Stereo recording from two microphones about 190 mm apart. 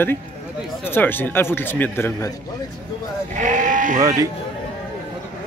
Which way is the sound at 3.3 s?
40° right (ahead or behind).